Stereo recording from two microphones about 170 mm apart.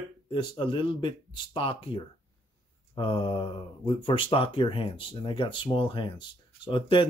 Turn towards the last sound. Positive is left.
turn(degrees=30)  # may be behind; listen again after turning